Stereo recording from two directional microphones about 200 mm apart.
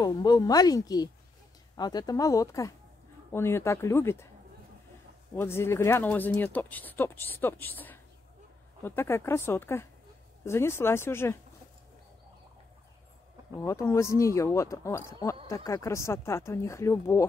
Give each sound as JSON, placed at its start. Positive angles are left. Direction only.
{"t": 0.0, "sound": "a woman's voice", "side_deg": 20}
{"t": 5.4, "sound": "speech", "side_deg": 10}
{"t": 13.7, "sound": "speech", "side_deg": 15}